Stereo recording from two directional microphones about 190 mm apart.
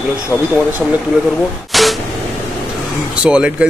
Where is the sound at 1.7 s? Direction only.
Centre (ahead or behind).